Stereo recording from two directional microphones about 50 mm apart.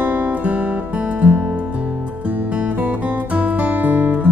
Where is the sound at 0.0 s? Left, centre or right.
Right.